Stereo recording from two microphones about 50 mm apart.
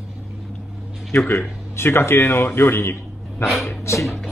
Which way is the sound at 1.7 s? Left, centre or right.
Left.